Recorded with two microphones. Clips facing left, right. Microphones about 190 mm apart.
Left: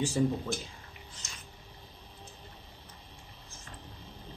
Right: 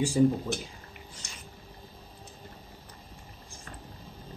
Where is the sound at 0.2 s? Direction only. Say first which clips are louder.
Right 6 dB; 15° right (ahead or behind).